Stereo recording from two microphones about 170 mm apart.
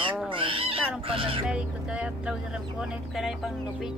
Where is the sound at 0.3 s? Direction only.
30° right (ahead or behind).